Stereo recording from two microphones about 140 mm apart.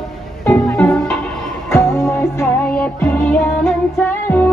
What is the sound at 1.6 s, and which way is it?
Music, 15° left (ahead or behind).